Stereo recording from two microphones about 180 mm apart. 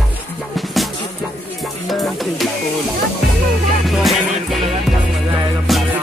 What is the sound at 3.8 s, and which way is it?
Music, centre (ahead or behind).